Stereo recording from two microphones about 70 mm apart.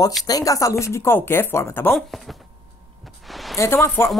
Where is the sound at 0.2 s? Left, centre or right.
Left.